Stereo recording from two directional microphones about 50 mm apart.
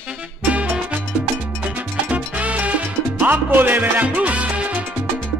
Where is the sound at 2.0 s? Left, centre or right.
Right.